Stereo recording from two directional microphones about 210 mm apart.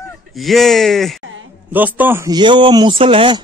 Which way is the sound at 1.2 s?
65° right (ahead or behind).